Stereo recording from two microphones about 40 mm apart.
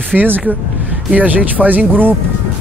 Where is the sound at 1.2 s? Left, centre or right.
Right.